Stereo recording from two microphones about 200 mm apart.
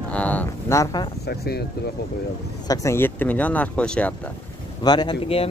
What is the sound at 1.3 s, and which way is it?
Speech, 50° left (ahead or behind).